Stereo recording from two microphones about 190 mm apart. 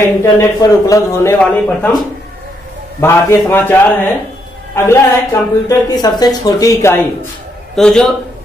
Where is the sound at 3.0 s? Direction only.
10° left (ahead or behind).